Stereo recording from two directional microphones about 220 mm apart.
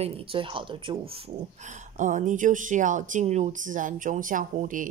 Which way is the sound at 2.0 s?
35° right (ahead or behind).